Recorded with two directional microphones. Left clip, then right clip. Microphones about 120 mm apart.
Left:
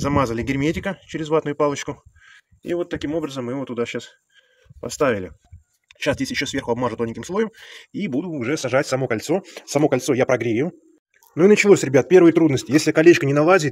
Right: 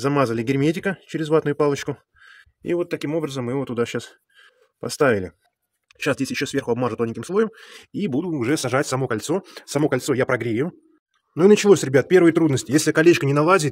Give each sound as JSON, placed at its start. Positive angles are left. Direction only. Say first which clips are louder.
{"t": 0.0, "sound": "speech", "louder": "even", "side_deg": -40}
{"t": 2.6, "sound": "speech", "louder": "right 1 dB", "side_deg": -65}
{"t": 5.9, "sound": "speech", "louder": "left 1 dB", "side_deg": -35}
{"t": 8.1, "sound": "speech", "louder": "right 1 dB", "side_deg": -55}
{"t": 8.6, "sound": "a man's voice", "louder": "left 2 dB", "side_deg": -25}